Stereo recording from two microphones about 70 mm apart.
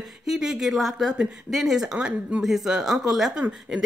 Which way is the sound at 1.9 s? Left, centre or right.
Centre.